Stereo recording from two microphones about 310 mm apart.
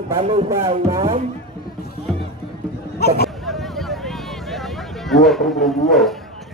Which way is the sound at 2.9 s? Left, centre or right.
Left.